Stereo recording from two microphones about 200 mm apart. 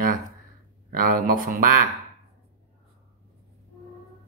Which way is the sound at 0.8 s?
45° right (ahead or behind).